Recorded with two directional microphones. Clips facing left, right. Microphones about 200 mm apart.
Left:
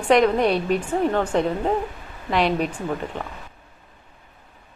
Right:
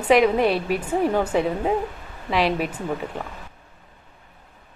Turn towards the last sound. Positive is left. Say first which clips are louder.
# left 1 dB
turn(degrees=-5)  # may be behind; listen again after turning